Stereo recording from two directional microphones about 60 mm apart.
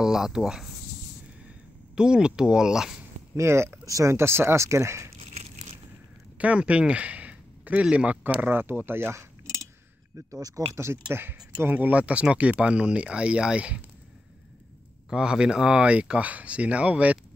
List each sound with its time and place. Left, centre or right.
0.0 s speech: centre
2.0 s speech: centre
3.3 s speech: right
3.8 s speech: right
4.1 s speech: right
6.3 s speech: right
9.1 s keys jangling: right
10.1 s speech: right
11.6 s speech: right
15.0 s speech: centre